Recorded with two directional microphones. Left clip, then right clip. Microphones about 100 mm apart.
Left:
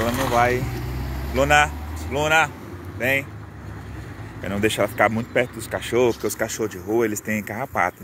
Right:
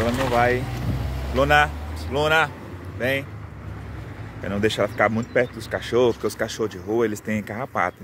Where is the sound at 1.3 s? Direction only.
10° right (ahead or behind).